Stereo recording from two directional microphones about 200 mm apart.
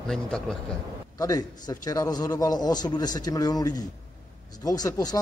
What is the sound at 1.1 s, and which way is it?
A man's voice, 15° left (ahead or behind).